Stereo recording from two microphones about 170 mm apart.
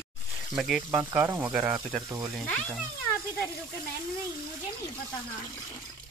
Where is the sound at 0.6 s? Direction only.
Centre (ahead or behind).